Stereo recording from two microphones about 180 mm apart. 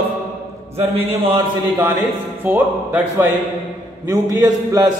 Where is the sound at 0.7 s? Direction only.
35° right (ahead or behind).